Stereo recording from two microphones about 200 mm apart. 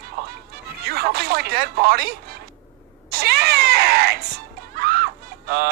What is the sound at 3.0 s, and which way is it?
Music, 50° right (ahead or behind).